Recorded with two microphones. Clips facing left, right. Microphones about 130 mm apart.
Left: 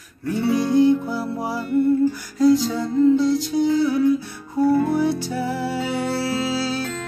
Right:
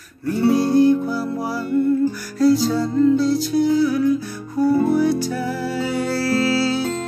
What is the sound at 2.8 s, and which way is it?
Music, 15° left (ahead or behind).